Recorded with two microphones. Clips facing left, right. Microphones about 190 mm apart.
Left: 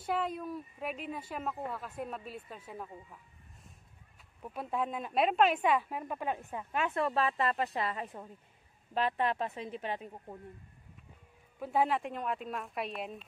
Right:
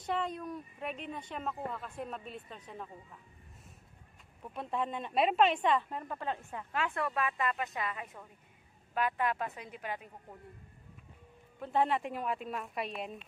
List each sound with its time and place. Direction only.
0.0 s a woman's voice: 5° left (ahead or behind)
4.6 s a woman's voice: 5° left (ahead or behind); by 10.1 s 25° left (ahead or behind)
11.6 s a woman's voice: 5° left (ahead or behind)